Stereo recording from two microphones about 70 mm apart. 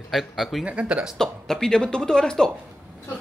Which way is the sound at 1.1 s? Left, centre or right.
Centre.